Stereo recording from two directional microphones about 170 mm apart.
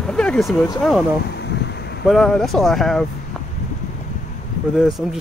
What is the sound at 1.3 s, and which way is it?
Wind, 85° left.